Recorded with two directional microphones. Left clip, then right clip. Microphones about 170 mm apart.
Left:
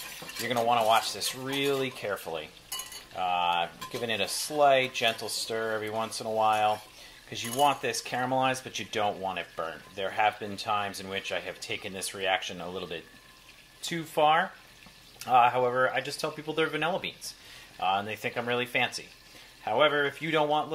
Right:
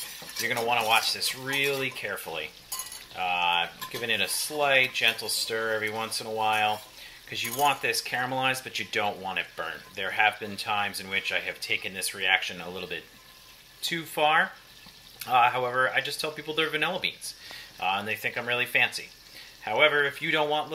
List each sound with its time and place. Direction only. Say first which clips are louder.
0.5 s speech: left 1 dB; 50° left (ahead or behind)